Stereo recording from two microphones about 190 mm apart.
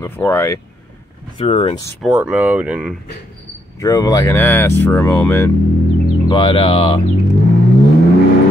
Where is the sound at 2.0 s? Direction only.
5° right (ahead or behind).